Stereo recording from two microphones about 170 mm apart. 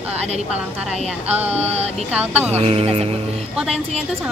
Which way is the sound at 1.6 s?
40° right (ahead or behind).